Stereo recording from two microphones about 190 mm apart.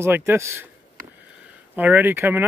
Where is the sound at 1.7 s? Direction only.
10° right (ahead or behind).